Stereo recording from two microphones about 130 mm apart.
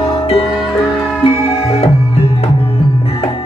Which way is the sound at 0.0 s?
50° left (ahead or behind).